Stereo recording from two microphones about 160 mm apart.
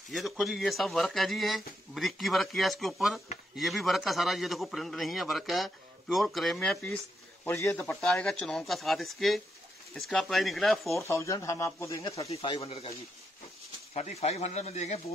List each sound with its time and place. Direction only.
0.1 s a man's voice: centre (ahead or behind)
7.4 s speech: 15° left (ahead or behind)
7.8 s a man's voice: 5° left (ahead or behind)
11.0 s speech: 20° left (ahead or behind)
12.3 s speech: 35° left (ahead or behind)
13.9 s speech: 45° left (ahead or behind)